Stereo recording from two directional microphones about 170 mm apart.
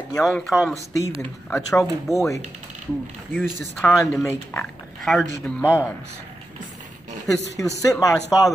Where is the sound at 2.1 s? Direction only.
20° right (ahead or behind).